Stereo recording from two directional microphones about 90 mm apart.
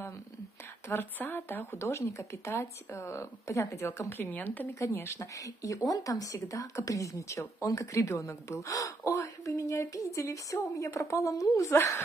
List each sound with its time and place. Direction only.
0.8 s speech: 20° left (ahead or behind)
4.1 s speech: 20° left (ahead or behind)
4.7 s speech: 30° left (ahead or behind)